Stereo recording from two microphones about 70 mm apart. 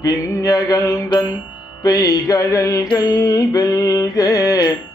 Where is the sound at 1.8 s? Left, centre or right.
Left.